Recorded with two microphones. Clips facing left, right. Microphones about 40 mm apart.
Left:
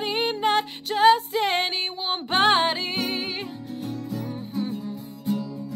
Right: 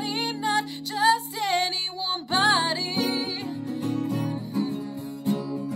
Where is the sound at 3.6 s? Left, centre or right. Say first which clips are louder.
Right 5 dB; right.